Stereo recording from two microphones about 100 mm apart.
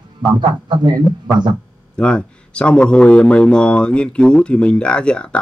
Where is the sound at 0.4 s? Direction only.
50° right (ahead or behind).